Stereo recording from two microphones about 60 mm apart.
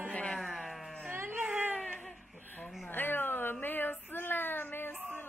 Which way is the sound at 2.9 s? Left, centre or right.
Left.